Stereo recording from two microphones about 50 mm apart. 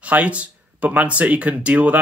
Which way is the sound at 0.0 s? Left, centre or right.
Right.